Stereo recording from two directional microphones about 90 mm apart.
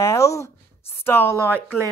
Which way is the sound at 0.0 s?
35° left (ahead or behind).